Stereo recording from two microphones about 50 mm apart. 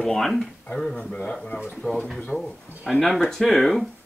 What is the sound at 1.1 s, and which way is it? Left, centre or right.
Speech, centre.